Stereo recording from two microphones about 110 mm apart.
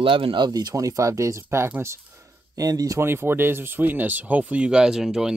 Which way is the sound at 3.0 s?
20° right (ahead or behind).